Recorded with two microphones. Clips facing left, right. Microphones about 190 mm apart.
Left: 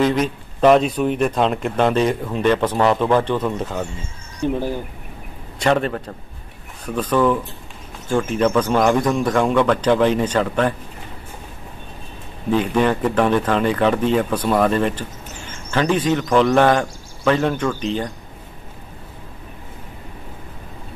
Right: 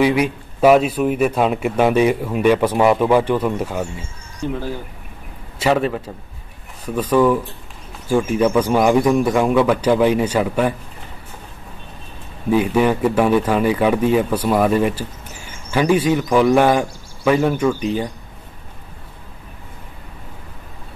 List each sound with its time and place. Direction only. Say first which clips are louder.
0.0 s speech: right 2 dB; 10° right (ahead or behind)
4.4 s speech: left 3 dB; 15° left (ahead or behind)
5.6 s a man's voice: right 1 dB; 5° right (ahead or behind)
12.4 s speech: right 2 dB; 10° right (ahead or behind)